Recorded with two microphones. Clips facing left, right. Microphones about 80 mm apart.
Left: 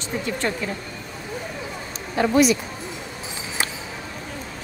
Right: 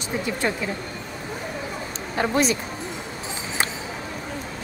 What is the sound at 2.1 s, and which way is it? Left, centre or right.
Speech, right.